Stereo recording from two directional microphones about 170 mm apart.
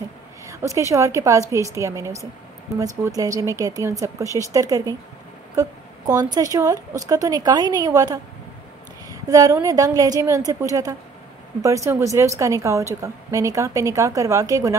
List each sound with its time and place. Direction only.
0.5 s a woman's voice: 20° right (ahead or behind)